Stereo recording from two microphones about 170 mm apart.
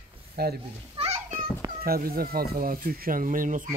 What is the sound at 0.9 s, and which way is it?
Children playing, 40° right (ahead or behind).